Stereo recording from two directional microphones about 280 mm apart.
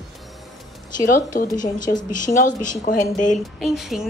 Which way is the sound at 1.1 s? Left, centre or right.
Left.